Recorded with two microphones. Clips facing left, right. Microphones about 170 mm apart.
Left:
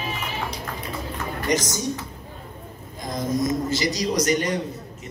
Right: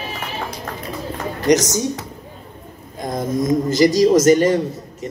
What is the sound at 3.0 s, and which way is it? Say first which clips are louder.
Speech: right 4 dB; 55° right (ahead or behind).